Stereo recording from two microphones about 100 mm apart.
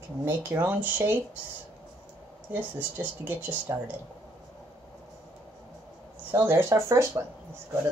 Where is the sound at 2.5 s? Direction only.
15° right (ahead or behind).